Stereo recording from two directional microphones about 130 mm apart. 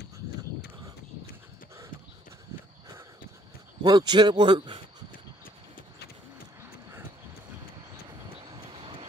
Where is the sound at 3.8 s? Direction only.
35° right (ahead or behind).